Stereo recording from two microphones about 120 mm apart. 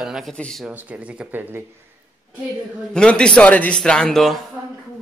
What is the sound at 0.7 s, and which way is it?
Speech, 10° right (ahead or behind).